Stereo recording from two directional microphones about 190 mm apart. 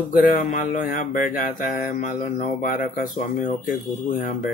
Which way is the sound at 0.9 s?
45° left (ahead or behind).